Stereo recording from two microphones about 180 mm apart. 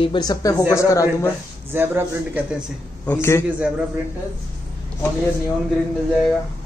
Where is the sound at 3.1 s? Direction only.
15° left (ahead or behind).